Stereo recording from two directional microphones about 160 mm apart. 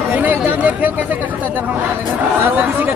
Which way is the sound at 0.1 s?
10° right (ahead or behind).